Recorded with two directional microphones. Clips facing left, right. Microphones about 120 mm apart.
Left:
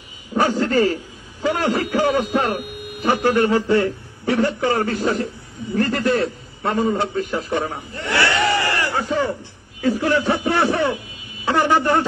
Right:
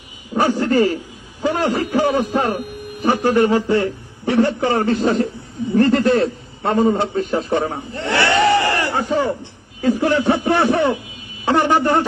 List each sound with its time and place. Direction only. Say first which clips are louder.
0.3 s a man's voice: right 2 dB; 15° right (ahead or behind)